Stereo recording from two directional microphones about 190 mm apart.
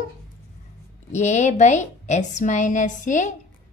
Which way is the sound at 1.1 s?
40° left (ahead or behind).